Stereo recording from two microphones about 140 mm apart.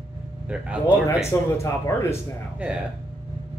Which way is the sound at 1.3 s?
20° left (ahead or behind).